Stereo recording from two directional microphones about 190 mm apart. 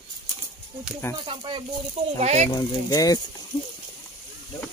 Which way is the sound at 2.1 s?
35° right (ahead or behind).